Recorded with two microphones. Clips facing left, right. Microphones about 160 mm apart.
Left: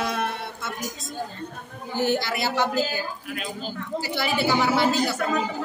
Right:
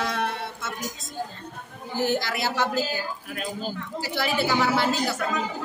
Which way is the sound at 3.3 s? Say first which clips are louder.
Right 2 dB; 45° right (ahead or behind).